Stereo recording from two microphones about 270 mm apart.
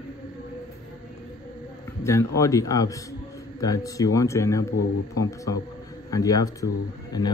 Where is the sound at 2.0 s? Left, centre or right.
Centre.